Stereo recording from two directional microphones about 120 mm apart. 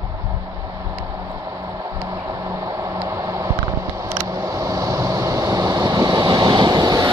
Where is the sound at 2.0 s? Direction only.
25° right (ahead or behind).